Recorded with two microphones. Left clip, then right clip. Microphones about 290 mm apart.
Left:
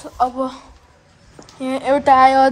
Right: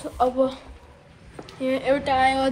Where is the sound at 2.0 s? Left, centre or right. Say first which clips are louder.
Left 12 dB; left.